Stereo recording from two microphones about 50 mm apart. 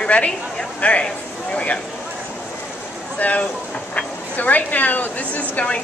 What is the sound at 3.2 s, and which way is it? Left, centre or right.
A woman's voice, left.